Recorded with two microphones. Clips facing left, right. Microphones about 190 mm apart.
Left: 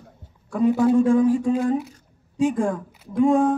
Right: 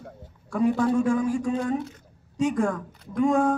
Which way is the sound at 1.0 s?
30° left (ahead or behind).